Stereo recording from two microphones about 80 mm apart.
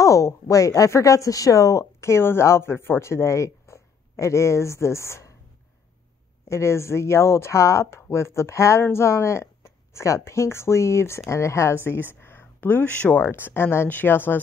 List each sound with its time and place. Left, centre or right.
0.0 s speech: left
6.4 s speech: left
12.2 s a sound: left
13.2 s speech: left